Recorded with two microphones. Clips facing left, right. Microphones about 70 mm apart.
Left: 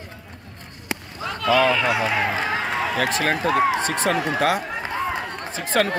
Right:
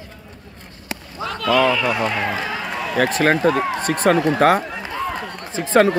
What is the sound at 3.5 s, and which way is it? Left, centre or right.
Speech, centre.